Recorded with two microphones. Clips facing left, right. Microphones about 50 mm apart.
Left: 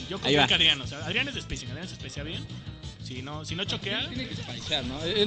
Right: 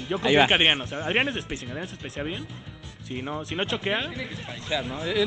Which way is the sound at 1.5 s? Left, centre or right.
Right.